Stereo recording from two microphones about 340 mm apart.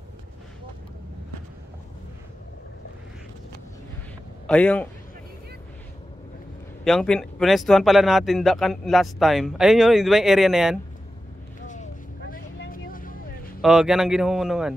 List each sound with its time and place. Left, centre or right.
4.5 s speech: centre
6.8 s speech: centre
11.6 s vehicle: left
13.6 s speech: centre